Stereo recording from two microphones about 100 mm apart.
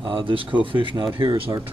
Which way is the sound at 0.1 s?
60° right (ahead or behind).